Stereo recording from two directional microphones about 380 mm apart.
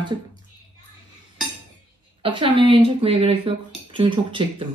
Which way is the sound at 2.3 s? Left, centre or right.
Centre.